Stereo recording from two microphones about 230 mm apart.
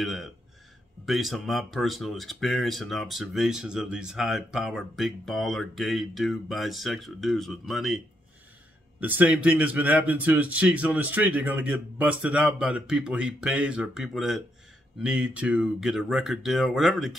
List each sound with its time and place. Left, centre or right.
0.0 s speech: centre
9.0 s a man's voice: centre